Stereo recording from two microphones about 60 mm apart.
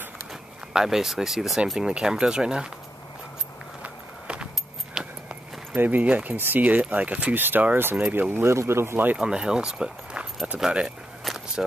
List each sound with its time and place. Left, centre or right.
0.3 s speech: centre
3.8 s walk: centre
5.0 s a sound: centre
5.8 s speech: right
7.4 s speech: right
8.5 s speech: right
9.2 s speech: centre
11.2 s a sound: centre